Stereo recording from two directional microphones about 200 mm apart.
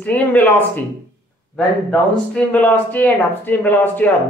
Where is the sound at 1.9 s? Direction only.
5° left (ahead or behind).